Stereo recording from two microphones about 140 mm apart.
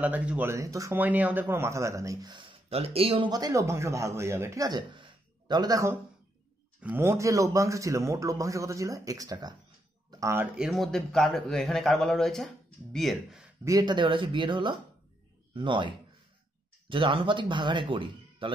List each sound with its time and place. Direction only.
0.0 s speech: 10° right (ahead or behind)
0.9 s speech: 10° right (ahead or behind); by 2.4 s 25° right (ahead or behind)
2.7 s speech: 45° right (ahead or behind)
3.3 s a man's voice: 25° right (ahead or behind)
10.5 s a man's voice: centre (ahead or behind)
13.7 s speech: 30° right (ahead or behind)
16.9 s speech: 35° right (ahead or behind)